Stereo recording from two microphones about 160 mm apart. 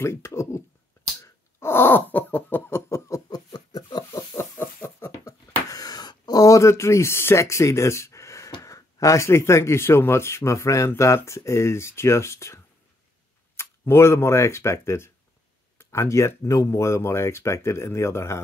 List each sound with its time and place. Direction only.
0.0 s speech: 15° left (ahead or behind)
1.2 s a sound: 15° left (ahead or behind)
8.6 s speech: 20° left (ahead or behind)
13.6 s speech: 15° left (ahead or behind)